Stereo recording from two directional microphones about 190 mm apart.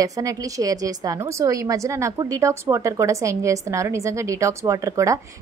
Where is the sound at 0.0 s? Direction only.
15° right (ahead or behind).